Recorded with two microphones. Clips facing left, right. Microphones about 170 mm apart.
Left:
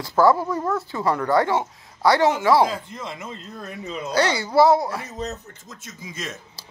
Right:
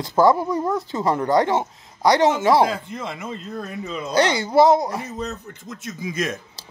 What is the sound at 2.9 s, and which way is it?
Speech, 60° right (ahead or behind).